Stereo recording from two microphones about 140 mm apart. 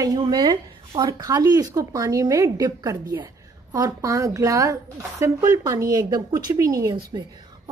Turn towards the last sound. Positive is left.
turn(degrees=-30)  # may be behind; listen again after turning